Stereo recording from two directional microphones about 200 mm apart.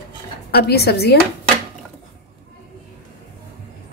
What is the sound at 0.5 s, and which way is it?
Speech, 55° left (ahead or behind).